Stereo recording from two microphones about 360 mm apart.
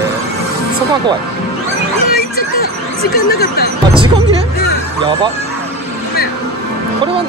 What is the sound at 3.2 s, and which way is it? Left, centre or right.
Speech, left.